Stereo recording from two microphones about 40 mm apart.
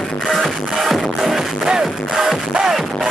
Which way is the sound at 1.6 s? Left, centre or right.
Centre.